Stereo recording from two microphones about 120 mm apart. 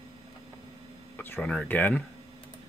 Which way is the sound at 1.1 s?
15° left (ahead or behind).